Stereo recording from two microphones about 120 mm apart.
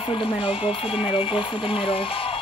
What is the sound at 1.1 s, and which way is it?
Speech, 50° left (ahead or behind).